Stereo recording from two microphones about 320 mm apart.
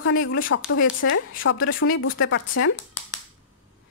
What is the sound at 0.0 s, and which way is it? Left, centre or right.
Speech, left.